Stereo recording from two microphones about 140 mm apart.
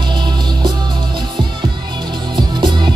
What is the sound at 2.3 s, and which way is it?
Music, 30° right (ahead or behind).